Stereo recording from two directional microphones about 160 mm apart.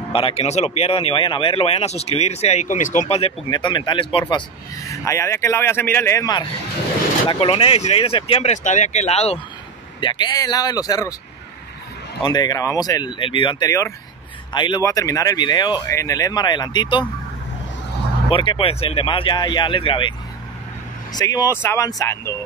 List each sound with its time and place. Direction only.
0.1 s speech: 35° left (ahead or behind)
3.4 s speech: 25° left (ahead or behind)
4.8 s speech: 20° left (ahead or behind)
7.2 s speech: 35° left (ahead or behind)
9.9 s speech: 30° left (ahead or behind)
12.2 s speech: 25° left (ahead or behind)
18.3 s speech: 30° left (ahead or behind)